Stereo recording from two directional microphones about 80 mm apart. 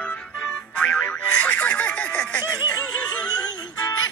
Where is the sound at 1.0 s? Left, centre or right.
Centre.